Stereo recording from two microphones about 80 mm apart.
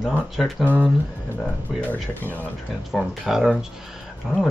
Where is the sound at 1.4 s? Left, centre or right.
Left.